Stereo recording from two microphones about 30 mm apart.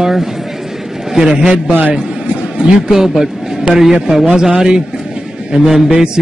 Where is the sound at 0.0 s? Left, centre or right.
Centre.